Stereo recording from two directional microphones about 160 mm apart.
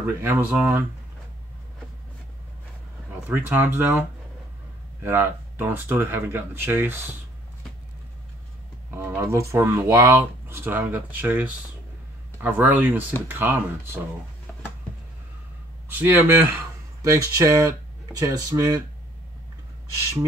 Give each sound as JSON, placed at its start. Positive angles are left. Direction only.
{"t": 0.0, "sound": "speech", "side_deg": -10}
{"t": 3.3, "sound": "speech", "side_deg": -10}
{"t": 5.0, "sound": "speech", "side_deg": -15}
{"t": 8.9, "sound": "speech", "side_deg": -15}
{"t": 15.9, "sound": "speech", "side_deg": -10}